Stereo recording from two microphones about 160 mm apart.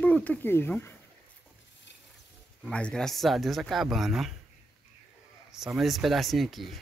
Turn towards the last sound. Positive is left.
turn(degrees=0)  # may be behind; listen again after turning